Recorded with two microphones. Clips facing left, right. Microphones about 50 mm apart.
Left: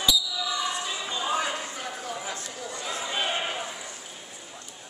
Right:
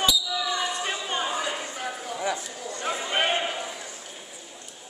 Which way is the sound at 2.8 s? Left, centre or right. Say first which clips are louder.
Right 5 dB; right.